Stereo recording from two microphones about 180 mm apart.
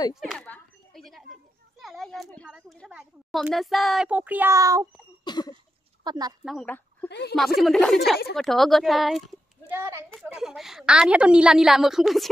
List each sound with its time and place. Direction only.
0.1 s a sound: centre (ahead or behind); by 4.8 s 20° right (ahead or behind)
5.2 s a sound: 25° left (ahead or behind)
6.0 s a woman's voice: 20° right (ahead or behind)
6.4 s a woman's voice: centre (ahead or behind)
7.1 s a woman's voice: 70° left (ahead or behind)
7.3 s a woman's voice: centre (ahead or behind)
9.7 s a woman's voice: 15° right (ahead or behind)
10.1 s a woman's voice: centre (ahead or behind)